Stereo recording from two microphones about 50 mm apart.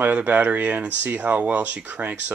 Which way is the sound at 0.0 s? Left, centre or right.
Right.